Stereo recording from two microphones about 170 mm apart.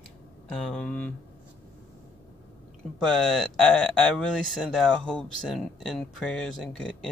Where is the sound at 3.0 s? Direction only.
5° left (ahead or behind).